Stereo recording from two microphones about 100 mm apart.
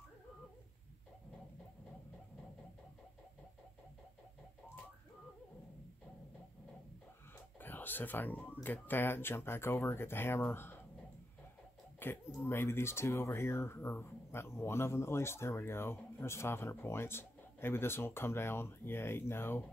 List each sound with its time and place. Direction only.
7.6 s a sound: 20° left (ahead or behind)
8.6 s speech: 20° left (ahead or behind)
12.0 s speech: 20° left (ahead or behind)